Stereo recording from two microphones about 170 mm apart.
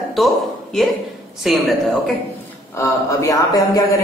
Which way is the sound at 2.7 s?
20° left (ahead or behind).